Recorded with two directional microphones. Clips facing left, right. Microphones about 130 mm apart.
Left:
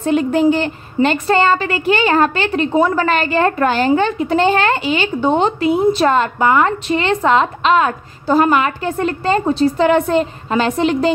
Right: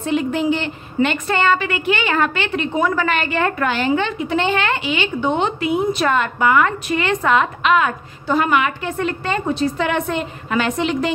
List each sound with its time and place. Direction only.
0.0 s a woman's voice: 40° left (ahead or behind)